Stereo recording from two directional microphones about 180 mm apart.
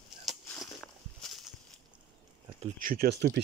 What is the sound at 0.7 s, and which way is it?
Walk, centre (ahead or behind).